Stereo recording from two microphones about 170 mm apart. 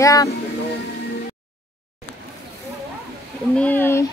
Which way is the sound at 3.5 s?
10° left (ahead or behind).